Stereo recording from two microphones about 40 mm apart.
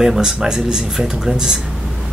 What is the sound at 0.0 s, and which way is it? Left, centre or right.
Speech, centre.